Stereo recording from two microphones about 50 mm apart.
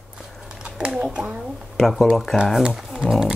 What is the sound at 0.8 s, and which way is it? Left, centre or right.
Speech, centre.